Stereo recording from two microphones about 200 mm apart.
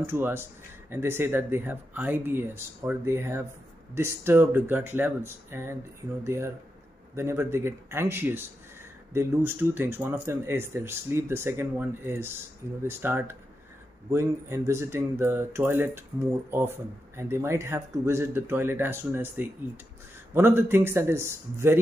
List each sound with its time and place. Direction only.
0.0 s speech: 10° right (ahead or behind)